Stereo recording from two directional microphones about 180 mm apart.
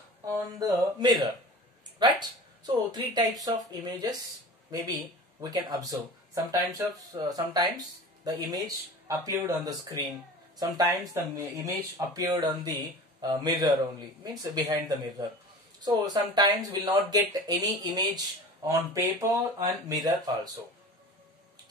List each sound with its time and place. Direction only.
0.2 s speech: 20° right (ahead or behind)